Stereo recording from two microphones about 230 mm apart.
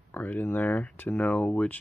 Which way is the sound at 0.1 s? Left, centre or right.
Centre.